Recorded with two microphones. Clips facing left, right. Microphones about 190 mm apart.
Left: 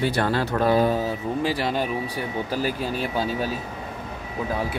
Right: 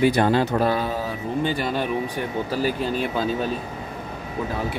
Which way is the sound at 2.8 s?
5° left (ahead or behind).